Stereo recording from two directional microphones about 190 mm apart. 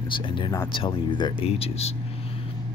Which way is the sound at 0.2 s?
25° left (ahead or behind).